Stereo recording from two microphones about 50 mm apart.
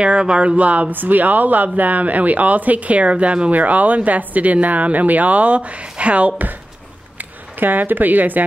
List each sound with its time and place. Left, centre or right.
0.0 s speech: centre
7.6 s speech: right